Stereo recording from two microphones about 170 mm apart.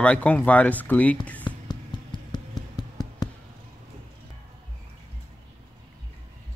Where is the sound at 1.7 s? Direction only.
25° left (ahead or behind).